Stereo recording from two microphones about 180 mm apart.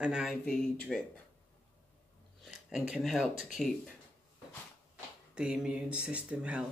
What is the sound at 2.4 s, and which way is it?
Speech, centre (ahead or behind).